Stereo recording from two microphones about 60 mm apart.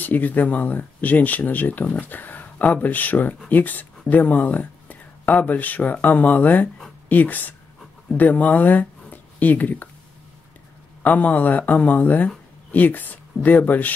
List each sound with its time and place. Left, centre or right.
0.0 s speech: left
11.0 s speech: left